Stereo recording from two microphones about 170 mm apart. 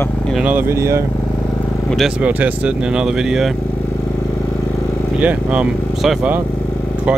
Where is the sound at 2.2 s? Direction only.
10° right (ahead or behind).